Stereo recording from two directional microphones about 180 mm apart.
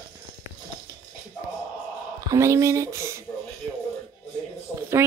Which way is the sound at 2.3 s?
15° right (ahead or behind).